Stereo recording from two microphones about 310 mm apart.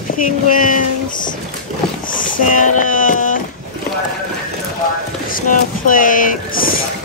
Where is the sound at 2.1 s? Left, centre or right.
Left.